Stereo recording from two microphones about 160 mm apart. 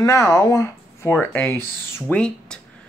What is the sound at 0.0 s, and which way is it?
Speech, 20° left (ahead or behind).